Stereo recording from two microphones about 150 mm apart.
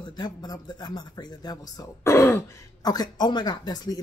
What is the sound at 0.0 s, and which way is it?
Speech, 30° left (ahead or behind).